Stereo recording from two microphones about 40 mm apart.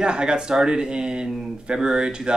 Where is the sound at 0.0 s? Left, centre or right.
Right.